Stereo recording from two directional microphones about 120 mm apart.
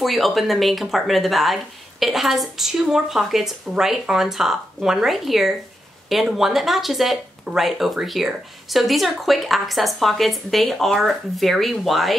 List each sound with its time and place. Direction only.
0.0 s speech: centre (ahead or behind)